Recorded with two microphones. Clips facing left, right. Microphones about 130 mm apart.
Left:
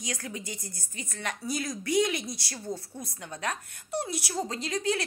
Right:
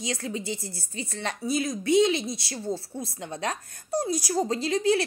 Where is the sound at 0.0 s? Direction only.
25° right (ahead or behind).